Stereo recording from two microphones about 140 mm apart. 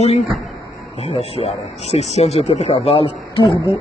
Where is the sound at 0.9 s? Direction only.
50° left (ahead or behind).